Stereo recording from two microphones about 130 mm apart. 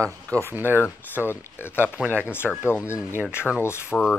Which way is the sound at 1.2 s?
15° left (ahead or behind).